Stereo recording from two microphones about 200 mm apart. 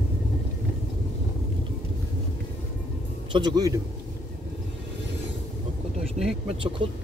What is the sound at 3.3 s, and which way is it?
Speech, 20° right (ahead or behind).